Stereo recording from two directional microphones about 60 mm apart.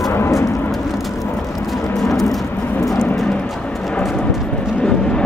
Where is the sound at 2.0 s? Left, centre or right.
Centre.